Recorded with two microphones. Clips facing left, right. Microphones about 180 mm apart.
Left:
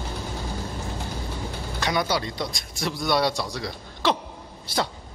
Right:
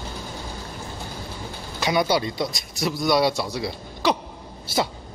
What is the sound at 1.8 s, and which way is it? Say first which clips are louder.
A man's voice: right 4 dB; 10° right (ahead or behind).